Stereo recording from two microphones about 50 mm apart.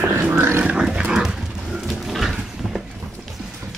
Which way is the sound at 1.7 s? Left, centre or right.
Centre.